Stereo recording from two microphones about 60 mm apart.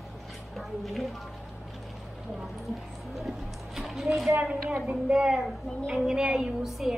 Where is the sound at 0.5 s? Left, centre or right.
Centre.